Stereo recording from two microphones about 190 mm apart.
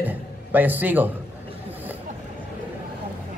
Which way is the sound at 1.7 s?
10° right (ahead or behind).